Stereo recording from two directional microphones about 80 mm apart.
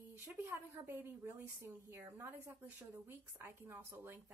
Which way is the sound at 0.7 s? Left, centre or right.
Right.